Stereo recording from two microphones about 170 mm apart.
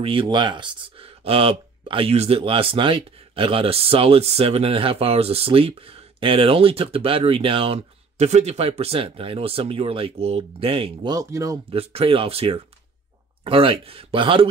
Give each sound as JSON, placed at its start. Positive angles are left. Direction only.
{"t": 0.0, "sound": "speech", "side_deg": -30}
{"t": 11.7, "sound": "speech", "side_deg": -35}